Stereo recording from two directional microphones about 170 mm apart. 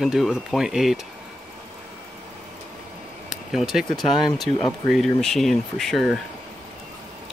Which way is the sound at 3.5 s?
Centre (ahead or behind).